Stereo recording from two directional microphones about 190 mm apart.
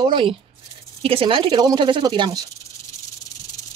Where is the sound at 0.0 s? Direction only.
25° right (ahead or behind).